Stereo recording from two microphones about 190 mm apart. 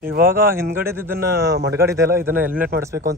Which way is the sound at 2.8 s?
15° right (ahead or behind).